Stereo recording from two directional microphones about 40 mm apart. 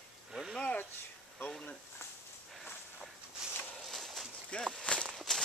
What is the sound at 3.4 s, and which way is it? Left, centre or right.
Walk, centre.